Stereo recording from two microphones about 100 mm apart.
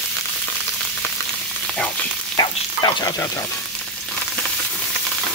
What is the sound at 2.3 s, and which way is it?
Frying, 45° left (ahead or behind).